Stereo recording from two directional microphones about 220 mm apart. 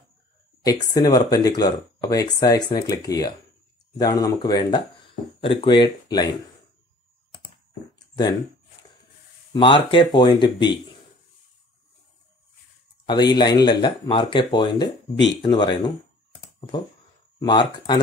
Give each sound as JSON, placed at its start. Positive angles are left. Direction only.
{"t": 0.7, "sound": "speech", "side_deg": 20}
{"t": 9.5, "sound": "speech", "side_deg": 20}
{"t": 13.0, "sound": "speech", "side_deg": 20}
{"t": 17.4, "sound": "speech", "side_deg": 20}